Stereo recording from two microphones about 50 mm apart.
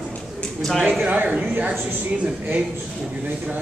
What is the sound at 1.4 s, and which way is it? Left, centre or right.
Speech, right.